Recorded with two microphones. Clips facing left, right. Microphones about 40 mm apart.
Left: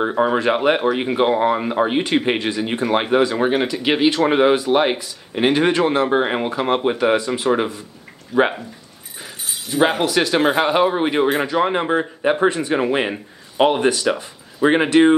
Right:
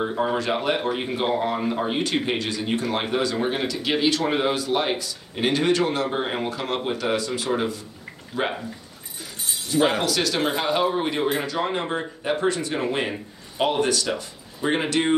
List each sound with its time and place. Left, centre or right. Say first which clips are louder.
0.4 s speech: left 7 dB; left
6.0 s speech: left 7 dB; left
8.4 s speech: left 9 dB; left
10.0 s speech: left 6 dB; left
14.6 s speech: left 9 dB; left